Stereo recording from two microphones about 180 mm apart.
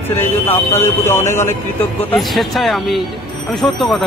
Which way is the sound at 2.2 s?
Centre (ahead or behind).